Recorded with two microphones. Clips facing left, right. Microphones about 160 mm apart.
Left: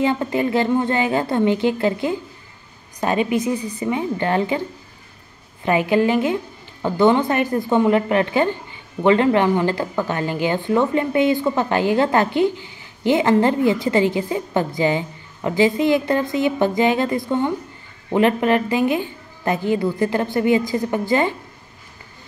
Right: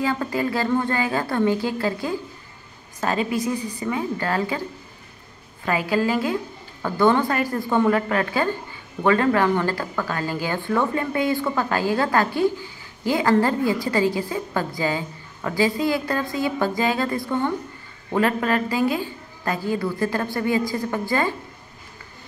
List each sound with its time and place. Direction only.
0.0 s speech: 20° left (ahead or behind)
5.7 s speech: 20° left (ahead or behind)